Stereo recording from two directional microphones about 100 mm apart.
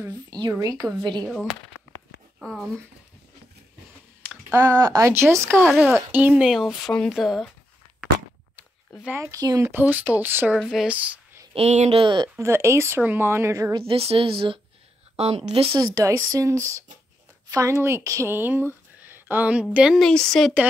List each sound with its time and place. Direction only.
0.3 s speech: 40° right (ahead or behind)
2.4 s speech: centre (ahead or behind)
4.6 s speech: 35° right (ahead or behind)
5.6 s speech: 10° right (ahead or behind)
9.2 s speech: 35° right (ahead or behind)
9.7 s speech: 20° right (ahead or behind)
10.6 s speech: centre (ahead or behind)
10.9 s speech: 15° right (ahead or behind)
11.5 s speech: 75° right (ahead or behind)
12.4 s speech: 25° right (ahead or behind)
13.7 s speech: 70° right (ahead or behind)
15.1 s speech: 90° right
15.7 s a woman's voice: 35° right (ahead or behind); by 20.0 s 10° right (ahead or behind)
20.0 s speech: 5° left (ahead or behind)